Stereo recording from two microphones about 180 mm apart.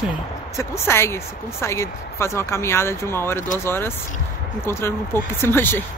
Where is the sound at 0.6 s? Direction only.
15° left (ahead or behind).